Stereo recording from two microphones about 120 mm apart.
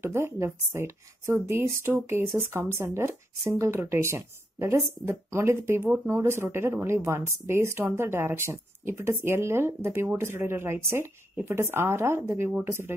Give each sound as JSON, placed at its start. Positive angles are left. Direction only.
{"t": 0.0, "sound": "speech", "side_deg": -20}